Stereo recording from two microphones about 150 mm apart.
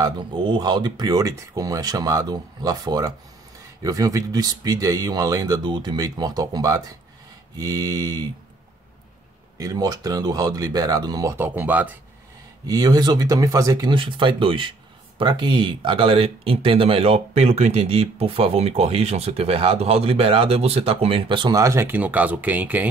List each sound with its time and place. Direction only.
0.0 s speech: 35° right (ahead or behind)
9.6 s speech: 25° right (ahead or behind)
12.6 s speech: 25° right (ahead or behind)